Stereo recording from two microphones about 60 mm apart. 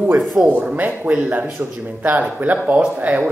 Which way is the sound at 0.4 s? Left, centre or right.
Right.